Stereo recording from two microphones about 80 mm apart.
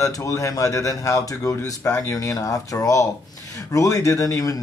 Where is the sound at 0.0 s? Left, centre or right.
Left.